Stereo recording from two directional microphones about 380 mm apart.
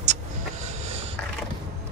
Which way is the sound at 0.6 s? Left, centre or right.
Centre.